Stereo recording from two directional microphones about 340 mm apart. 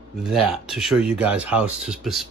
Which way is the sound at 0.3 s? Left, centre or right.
Centre.